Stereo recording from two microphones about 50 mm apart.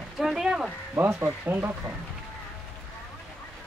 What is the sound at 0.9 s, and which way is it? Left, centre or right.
Speech, right.